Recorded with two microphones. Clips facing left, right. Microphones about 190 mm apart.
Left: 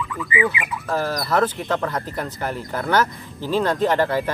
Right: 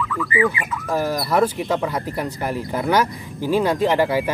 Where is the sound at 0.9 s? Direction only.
10° right (ahead or behind).